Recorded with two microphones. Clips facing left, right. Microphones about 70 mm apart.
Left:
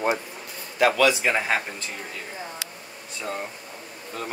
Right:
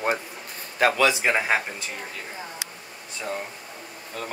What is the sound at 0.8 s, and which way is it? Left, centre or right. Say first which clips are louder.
Speech: left 1 dB; right.